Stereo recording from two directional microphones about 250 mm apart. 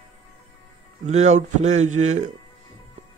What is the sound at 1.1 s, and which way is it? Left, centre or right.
A man's voice, right.